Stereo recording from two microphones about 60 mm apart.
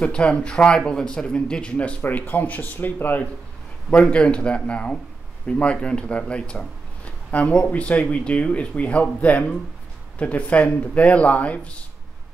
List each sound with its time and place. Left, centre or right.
0.0 s speech: centre
2.0 s speech: left
3.9 s speech: centre